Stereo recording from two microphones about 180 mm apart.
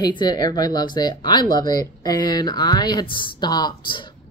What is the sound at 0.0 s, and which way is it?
A woman's voice, 25° left (ahead or behind).